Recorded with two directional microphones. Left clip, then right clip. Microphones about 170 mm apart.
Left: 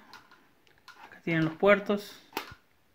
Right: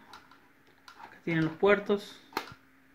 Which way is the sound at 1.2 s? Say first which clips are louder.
Left 1 dB; 55° left (ahead or behind).